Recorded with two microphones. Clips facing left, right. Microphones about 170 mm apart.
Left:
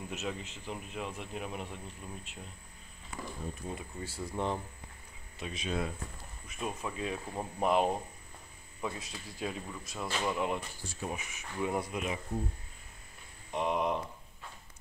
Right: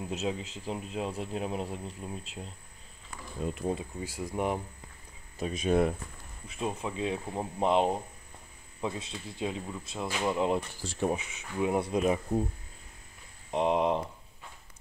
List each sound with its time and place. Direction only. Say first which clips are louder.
0.1 s speech: right 6 dB; 30° right (ahead or behind)
3.4 s speech: right 11 dB; 90° right
4.0 s speech: even; 15° right (ahead or behind)
5.4 s speech: right 9 dB; 45° right (ahead or behind)
6.6 s speech: right 4 dB; 20° right (ahead or behind)
10.8 s speech: right 9 dB; 85° right
11.1 s speech: right 8 dB; 25° right (ahead or behind)
11.9 s speech: right 9 dB; 40° right (ahead or behind)
13.5 s speech: right 5 dB; 30° right (ahead or behind)